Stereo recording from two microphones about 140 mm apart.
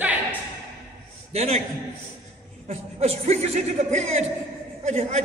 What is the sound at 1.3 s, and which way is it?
Speech, 50° right (ahead or behind).